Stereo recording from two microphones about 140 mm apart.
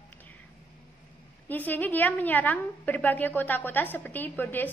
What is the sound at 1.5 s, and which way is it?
A woman's voice, 10° left (ahead or behind).